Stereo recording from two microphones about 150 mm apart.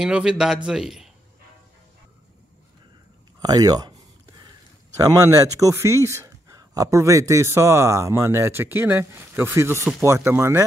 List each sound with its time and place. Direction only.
0.0 s a man's voice: 5° right (ahead or behind)
3.3 s speech: 25° right (ahead or behind)
5.0 s speech: 20° right (ahead or behind)